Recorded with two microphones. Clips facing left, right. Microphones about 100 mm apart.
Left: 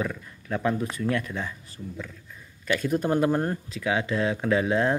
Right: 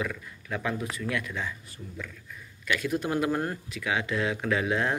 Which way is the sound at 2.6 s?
40° left (ahead or behind).